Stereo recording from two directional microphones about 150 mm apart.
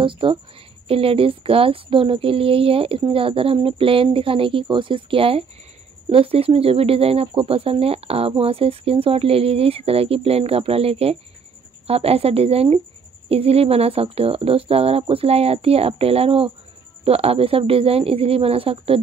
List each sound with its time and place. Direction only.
0.0 s speech: 35° right (ahead or behind)